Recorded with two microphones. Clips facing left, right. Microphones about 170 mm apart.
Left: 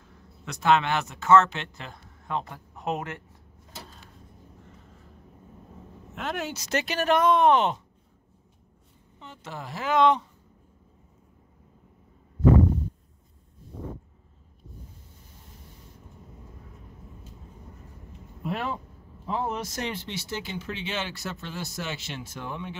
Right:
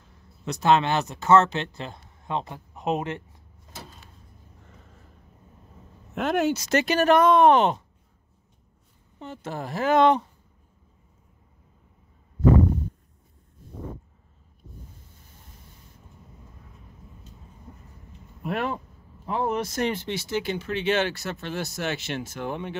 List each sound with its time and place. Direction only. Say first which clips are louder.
0.5 s speech: right 2 dB; 35° right (ahead or behind)
6.1 s speech: right 9 dB; 55° right (ahead or behind)
9.2 s speech: right 6 dB; 45° right (ahead or behind)
18.4 s speech: right 3 dB; 60° right (ahead or behind)